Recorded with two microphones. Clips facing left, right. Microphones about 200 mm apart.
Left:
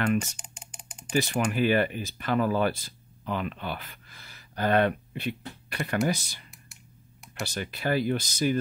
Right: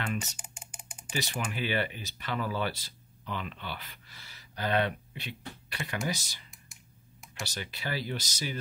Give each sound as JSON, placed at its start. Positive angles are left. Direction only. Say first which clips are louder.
{"t": 0.4, "sound": "music", "louder": "left 1 dB", "side_deg": -5}
{"t": 1.1, "sound": "speech", "louder": "left 9 dB", "side_deg": 50}
{"t": 6.5, "sound": "computer keyboard", "louder": "left 4 dB", "side_deg": 0}
{"t": 7.4, "sound": "speech", "louder": "left 8 dB", "side_deg": 55}